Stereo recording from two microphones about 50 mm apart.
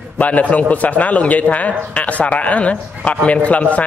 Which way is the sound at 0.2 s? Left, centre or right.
Left.